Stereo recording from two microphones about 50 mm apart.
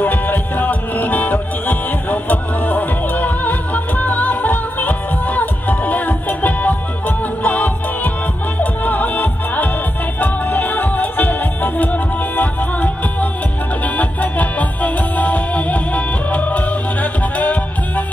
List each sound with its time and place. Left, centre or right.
0.0 s music: left